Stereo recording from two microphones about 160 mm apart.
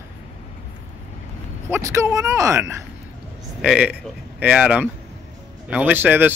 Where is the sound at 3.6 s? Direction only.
5° right (ahead or behind).